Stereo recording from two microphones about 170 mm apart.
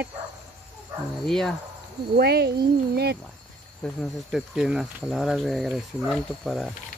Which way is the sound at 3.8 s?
Centre (ahead or behind).